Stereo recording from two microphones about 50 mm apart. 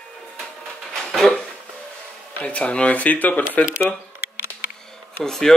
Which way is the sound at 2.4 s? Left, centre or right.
Left.